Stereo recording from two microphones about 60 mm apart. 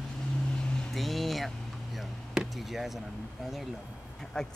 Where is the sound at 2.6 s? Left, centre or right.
Centre.